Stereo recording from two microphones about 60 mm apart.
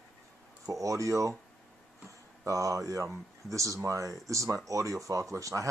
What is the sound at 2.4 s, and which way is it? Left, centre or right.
Speech, right.